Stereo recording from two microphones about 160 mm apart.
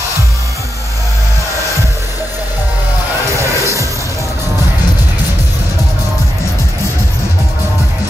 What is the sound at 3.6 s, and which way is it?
Music, 20° left (ahead or behind).